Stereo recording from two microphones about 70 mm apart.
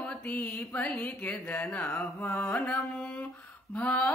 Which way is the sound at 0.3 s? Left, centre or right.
Centre.